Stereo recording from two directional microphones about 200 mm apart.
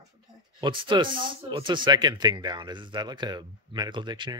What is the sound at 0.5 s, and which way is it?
Speech, 25° right (ahead or behind).